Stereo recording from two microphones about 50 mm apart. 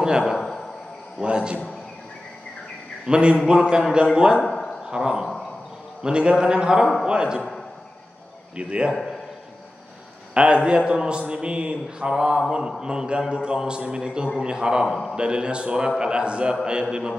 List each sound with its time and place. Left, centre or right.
0.4 s a sound: centre
1.2 s a man's voice: centre
3.1 s a man's voice: centre
4.4 s a sound: centre
4.8 s a man's voice: centre
8.5 s a man's voice: centre
10.3 s a man's voice: right
14.9 s a man's voice: centre
15.1 s a man's voice: centre